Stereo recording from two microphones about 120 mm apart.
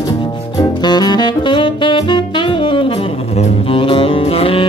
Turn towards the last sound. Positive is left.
turn(degrees=50)  # may be behind; listen again after turning